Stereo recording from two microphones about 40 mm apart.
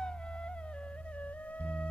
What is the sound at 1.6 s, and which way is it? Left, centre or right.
Music, left.